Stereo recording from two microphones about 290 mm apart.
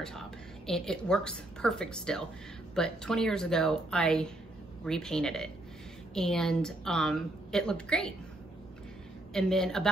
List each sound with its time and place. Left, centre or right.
0.7 s a woman's voice: centre
9.3 s a woman's voice: centre